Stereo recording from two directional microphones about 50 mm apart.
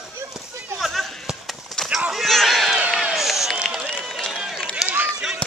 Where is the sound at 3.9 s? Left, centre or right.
Centre.